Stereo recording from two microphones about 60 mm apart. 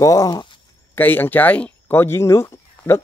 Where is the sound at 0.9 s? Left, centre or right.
Left.